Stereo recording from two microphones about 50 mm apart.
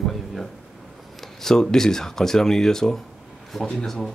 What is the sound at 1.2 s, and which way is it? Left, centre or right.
Speech, centre.